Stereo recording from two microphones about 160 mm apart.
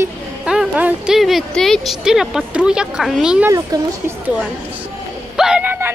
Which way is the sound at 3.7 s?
25° right (ahead or behind).